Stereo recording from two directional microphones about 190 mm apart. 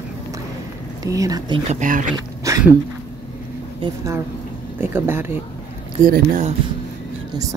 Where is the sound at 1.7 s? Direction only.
40° right (ahead or behind).